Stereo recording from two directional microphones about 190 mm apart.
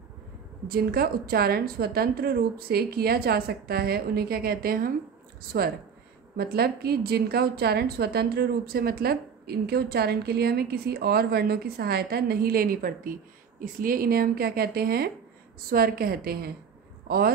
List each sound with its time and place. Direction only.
0.7 s a woman's voice: 55° right (ahead or behind)